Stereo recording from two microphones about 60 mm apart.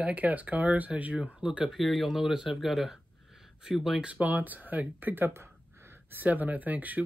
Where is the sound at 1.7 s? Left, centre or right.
Centre.